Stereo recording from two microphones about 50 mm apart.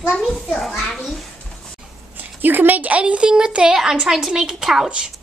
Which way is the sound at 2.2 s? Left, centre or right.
Right.